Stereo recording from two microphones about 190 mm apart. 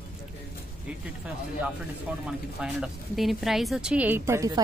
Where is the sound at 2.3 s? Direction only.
5° right (ahead or behind).